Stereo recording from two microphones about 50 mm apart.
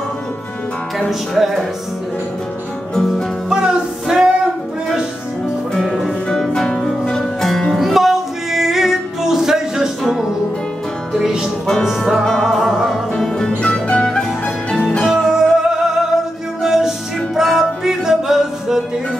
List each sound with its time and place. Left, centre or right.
0.9 s music: centre
2.9 s music: centre
3.4 s music: centre
5.9 s music: centre
6.2 s music: centre
11.1 s music: centre
12.4 s music: centre
13.1 s music: centre
15.2 s music: centre